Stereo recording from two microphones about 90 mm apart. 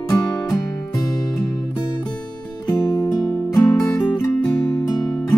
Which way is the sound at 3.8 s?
15° left (ahead or behind).